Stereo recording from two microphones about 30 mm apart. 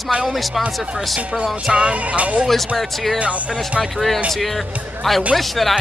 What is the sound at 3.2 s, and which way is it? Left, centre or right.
Music, right.